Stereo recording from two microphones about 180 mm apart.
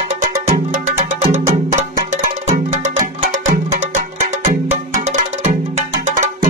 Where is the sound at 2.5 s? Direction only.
45° right (ahead or behind).